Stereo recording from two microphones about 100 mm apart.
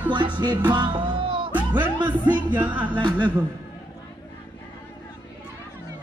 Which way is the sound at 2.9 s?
50° right (ahead or behind).